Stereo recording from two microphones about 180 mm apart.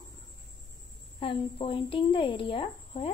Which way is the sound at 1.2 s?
30° left (ahead or behind).